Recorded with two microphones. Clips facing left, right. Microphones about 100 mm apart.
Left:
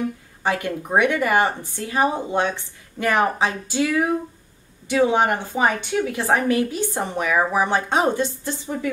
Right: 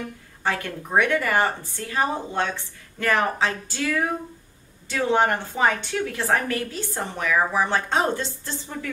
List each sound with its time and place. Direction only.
0.4 s a woman's voice: 15° left (ahead or behind)